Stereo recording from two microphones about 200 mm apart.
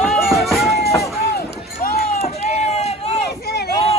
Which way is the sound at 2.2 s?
30° left (ahead or behind).